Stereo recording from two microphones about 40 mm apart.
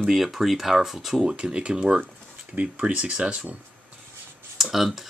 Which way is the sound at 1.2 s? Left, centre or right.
Right.